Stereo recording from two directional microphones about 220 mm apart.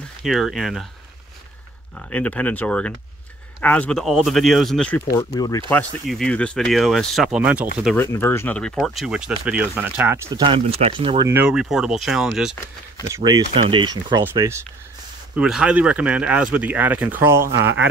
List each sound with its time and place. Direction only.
0.2 s speech: centre (ahead or behind)
2.0 s speech: 5° left (ahead or behind)
5.7 s speech: 5° left (ahead or behind)
7.8 s speech: 10° left (ahead or behind); by 10.4 s 10° right (ahead or behind)
10.4 s speech: 25° right (ahead or behind); by 12.5 s centre (ahead or behind)
13.1 s speech: 15° right (ahead or behind)
15.3 s speech: 5° right (ahead or behind)